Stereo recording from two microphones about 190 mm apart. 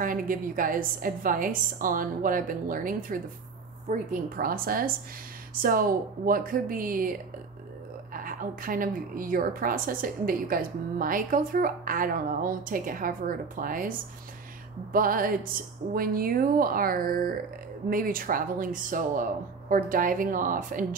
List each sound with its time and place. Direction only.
0.0 s a woman's voice: 45° right (ahead or behind)